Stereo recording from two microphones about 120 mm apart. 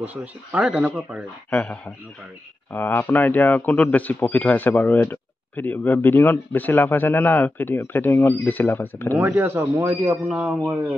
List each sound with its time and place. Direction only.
0.0 s speech: 15° right (ahead or behind)
1.5 s a man's voice: 5° left (ahead or behind)
2.7 s a man's voice: 15° left (ahead or behind)
9.2 s speech: 15° right (ahead or behind)